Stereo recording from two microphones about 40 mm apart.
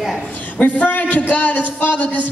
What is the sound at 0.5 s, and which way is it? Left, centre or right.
Speech, left.